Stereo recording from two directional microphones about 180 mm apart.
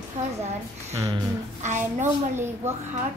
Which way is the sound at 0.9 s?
20° right (ahead or behind).